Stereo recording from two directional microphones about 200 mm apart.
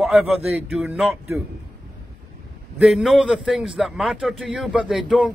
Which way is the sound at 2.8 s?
Centre (ahead or behind).